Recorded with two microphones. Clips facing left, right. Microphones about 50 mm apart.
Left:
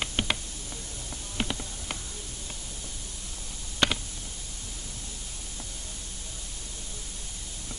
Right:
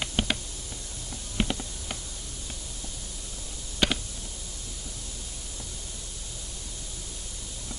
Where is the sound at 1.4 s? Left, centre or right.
Centre.